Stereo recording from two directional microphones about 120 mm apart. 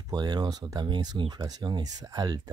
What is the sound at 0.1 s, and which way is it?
Speech, 35° right (ahead or behind).